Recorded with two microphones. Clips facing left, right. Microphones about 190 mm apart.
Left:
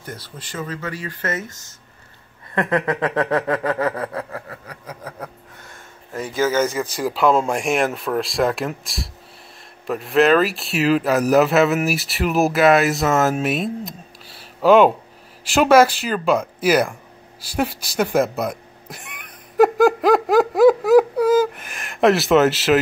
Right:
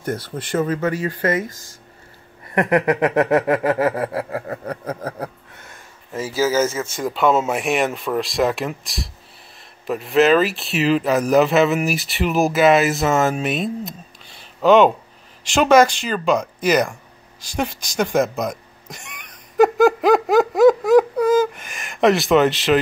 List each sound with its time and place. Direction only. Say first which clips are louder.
0.0 s speech: right 10 dB; 55° right (ahead or behind)
0.6 s a sound: right 8 dB; 45° right (ahead or behind)
1.2 s speech: right 5 dB; 10° right (ahead or behind)
2.5 s speech: right 3 dB; 25° right (ahead or behind)
4.5 s a sound: right 10 dB; 50° right (ahead or behind)
6.1 s speech: right 1 dB; 5° right (ahead or behind)